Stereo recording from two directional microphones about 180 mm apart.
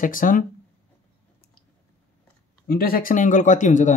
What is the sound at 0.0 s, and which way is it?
Speech, 50° left (ahead or behind).